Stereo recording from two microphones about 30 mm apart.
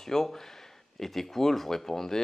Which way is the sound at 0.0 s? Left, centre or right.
Centre.